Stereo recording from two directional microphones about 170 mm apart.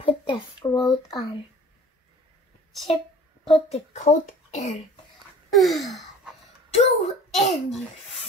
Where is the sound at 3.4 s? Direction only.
30° left (ahead or behind).